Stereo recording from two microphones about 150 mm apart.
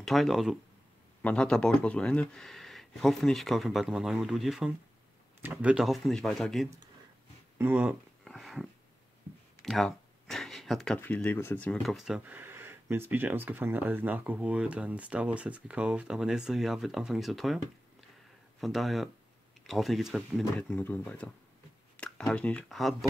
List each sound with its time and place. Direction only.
0.0 s speech: centre (ahead or behind)
7.5 s speech: 10° right (ahead or behind)
8.2 s a sound: centre (ahead or behind)
9.7 s a sound: 5° left (ahead or behind)
11.0 s speech: 10° left (ahead or behind)
12.4 s speech: 15° right (ahead or behind)
18.6 s speech: centre (ahead or behind)